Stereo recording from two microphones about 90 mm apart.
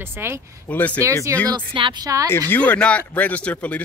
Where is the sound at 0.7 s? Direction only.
20° left (ahead or behind).